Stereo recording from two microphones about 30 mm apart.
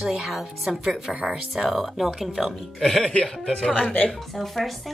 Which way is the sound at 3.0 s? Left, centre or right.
Left.